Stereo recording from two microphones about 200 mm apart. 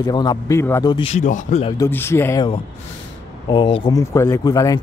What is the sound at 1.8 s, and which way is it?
Speech, 10° left (ahead or behind).